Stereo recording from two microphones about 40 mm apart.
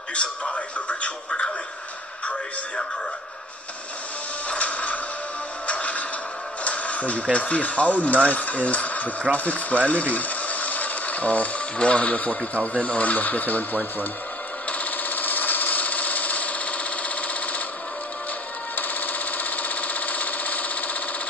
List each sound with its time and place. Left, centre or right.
0.1 s a man's voice: left
4.5 s music: left
7.3 s speech: left
14.7 s jackhammer: left
18.8 s a sound: left